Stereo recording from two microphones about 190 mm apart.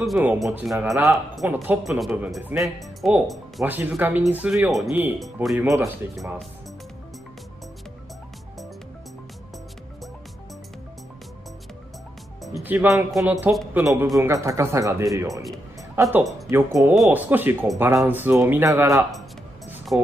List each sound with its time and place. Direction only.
0.0 s a man's voice: 5° right (ahead or behind)
0.9 s speech: 15° right (ahead or behind)
12.6 s speech: 15° right (ahead or behind)
16.9 s a man's voice: centre (ahead or behind)